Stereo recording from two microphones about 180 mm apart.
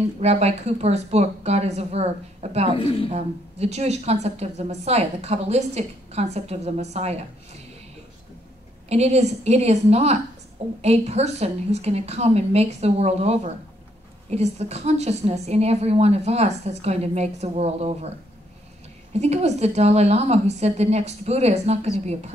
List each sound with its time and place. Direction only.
0.2 s a woman's voice: 35° right (ahead or behind)
2.8 s a woman's voice: 30° left (ahead or behind)
3.1 s a woman's voice: 35° right (ahead or behind)
8.8 s a woman's voice: 35° right (ahead or behind)
19.1 s a woman's voice: 35° right (ahead or behind)